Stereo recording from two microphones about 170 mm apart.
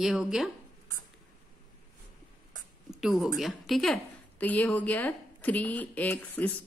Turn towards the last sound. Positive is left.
turn(degrees=10)  # may be behind; listen again after turning